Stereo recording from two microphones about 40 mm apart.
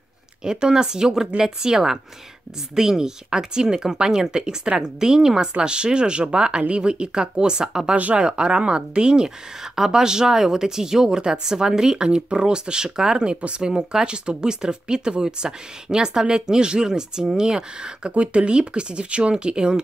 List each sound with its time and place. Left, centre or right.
0.4 s speech: right
7.9 s speech: right
8.2 s speech: right